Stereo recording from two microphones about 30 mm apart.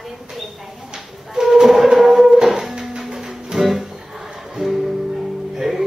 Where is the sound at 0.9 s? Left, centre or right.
Centre.